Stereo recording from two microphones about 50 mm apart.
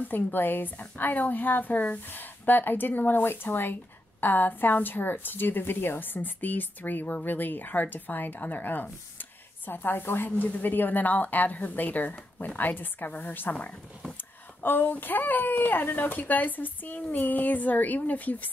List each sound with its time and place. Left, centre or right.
0.1 s a woman's voice: left